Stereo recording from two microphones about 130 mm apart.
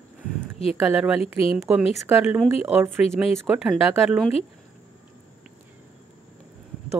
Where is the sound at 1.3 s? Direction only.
15° right (ahead or behind).